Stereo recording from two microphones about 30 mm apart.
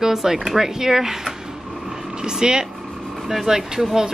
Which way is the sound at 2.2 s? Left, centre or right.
Right.